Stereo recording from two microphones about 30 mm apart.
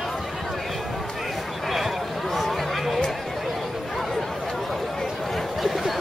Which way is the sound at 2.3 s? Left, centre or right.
Centre.